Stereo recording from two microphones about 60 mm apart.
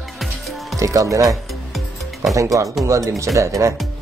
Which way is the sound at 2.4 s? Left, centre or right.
Right.